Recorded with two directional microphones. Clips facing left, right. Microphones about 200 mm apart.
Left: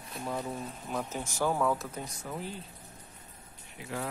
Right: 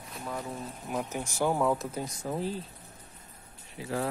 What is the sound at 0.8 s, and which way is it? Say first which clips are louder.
Speech: right 3 dB; 15° right (ahead or behind).